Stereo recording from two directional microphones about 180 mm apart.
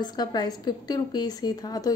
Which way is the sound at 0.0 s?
25° left (ahead or behind).